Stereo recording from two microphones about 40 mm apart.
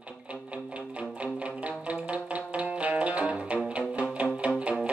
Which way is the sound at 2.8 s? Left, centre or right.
Right.